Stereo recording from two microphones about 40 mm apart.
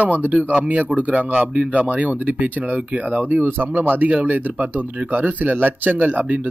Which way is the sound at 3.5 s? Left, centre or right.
Right.